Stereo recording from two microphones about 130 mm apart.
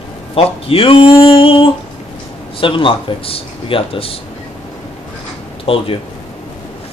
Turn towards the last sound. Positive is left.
turn(degrees=45)  # may be behind; listen again after turning